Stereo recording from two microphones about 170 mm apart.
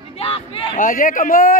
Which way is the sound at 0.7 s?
55° left (ahead or behind).